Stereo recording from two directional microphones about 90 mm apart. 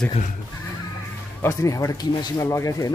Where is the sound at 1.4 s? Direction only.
35° left (ahead or behind).